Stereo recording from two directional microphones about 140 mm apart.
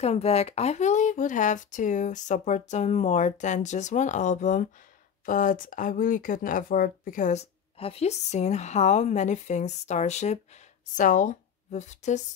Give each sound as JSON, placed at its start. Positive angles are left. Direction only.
{"t": 0.0, "sound": "speech", "side_deg": 50}
{"t": 7.7, "sound": "speech", "side_deg": 45}